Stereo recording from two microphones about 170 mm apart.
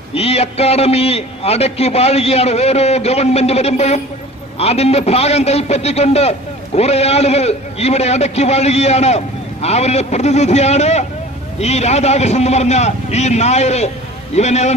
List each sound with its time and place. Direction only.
0.1 s a man's voice: 35° left (ahead or behind)